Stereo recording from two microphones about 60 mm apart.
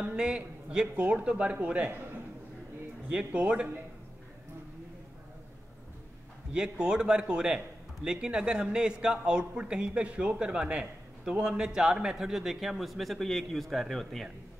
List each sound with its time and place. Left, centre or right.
0.0 s a man's voice: centre
3.3 s a man's voice: centre
6.5 s a man's voice: centre